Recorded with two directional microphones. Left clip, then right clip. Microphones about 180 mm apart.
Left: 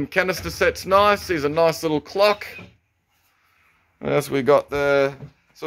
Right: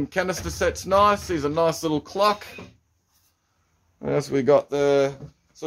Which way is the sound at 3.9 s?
Centre (ahead or behind).